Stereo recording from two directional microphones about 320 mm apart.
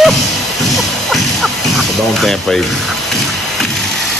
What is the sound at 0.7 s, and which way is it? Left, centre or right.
Music, centre.